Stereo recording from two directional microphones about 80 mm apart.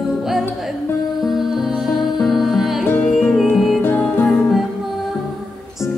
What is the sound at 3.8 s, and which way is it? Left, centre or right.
Music, left.